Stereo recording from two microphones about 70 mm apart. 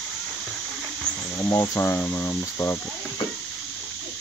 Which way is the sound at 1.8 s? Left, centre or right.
Left.